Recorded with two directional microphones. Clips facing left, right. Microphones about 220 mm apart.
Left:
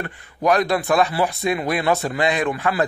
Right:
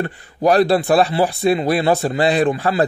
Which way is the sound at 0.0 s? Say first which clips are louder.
Right 4 dB; 30° right (ahead or behind).